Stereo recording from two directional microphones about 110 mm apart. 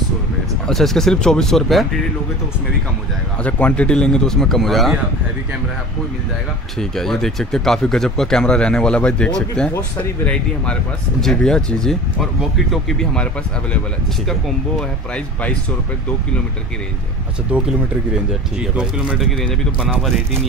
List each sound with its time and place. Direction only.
0.7 s speech: 5° left (ahead or behind)
3.4 s speech: 10° left (ahead or behind)
6.8 s speech: 5° left (ahead or behind)
14.8 s speech: 10° left (ahead or behind)
18.6 s speech: 10° right (ahead or behind)
19.3 s speech: 5° left (ahead or behind)